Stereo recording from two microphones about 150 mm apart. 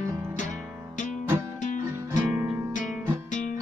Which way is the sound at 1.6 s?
55° left (ahead or behind).